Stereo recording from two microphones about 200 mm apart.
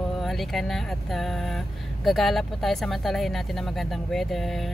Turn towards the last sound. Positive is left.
turn(degrees=0)  # may be behind; listen again after turning